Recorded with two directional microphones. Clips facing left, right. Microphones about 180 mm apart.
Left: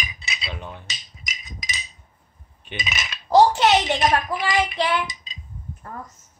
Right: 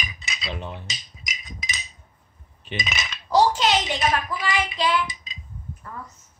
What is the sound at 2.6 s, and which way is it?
Cutlery, 5° left (ahead or behind).